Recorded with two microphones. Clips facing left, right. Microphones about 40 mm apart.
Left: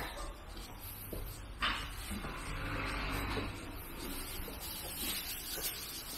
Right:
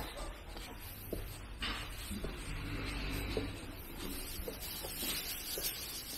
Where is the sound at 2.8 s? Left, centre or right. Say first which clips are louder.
Left 3 dB; left.